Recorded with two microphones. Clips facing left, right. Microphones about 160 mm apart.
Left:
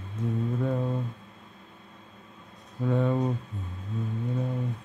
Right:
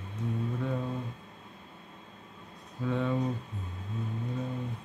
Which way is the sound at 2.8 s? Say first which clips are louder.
Left 5 dB; 45° left (ahead or behind).